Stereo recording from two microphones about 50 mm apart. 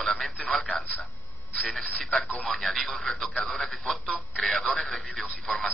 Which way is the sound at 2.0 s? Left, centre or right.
Centre.